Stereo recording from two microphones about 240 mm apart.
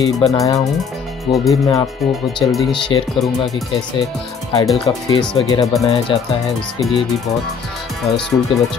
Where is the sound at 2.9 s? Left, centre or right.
Left.